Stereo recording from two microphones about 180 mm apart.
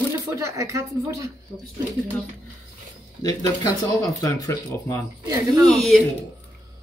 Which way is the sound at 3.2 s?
20° left (ahead or behind).